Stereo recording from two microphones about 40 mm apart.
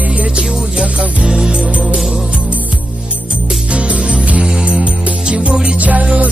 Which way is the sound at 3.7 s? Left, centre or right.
Right.